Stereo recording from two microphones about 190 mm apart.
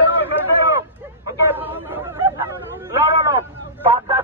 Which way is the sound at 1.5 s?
10° right (ahead or behind).